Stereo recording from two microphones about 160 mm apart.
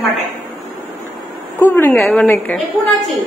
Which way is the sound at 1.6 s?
15° left (ahead or behind).